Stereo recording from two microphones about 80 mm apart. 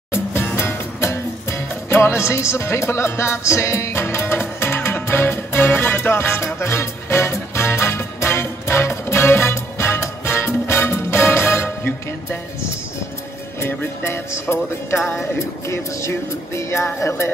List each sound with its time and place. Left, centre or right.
0.1 s music: left